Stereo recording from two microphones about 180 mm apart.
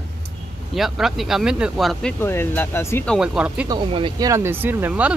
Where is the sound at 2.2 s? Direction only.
15° left (ahead or behind).